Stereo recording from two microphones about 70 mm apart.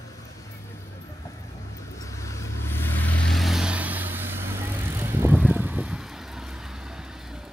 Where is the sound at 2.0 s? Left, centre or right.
Left.